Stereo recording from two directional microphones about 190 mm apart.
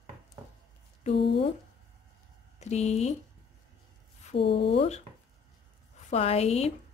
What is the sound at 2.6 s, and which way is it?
Speech, 35° left (ahead or behind).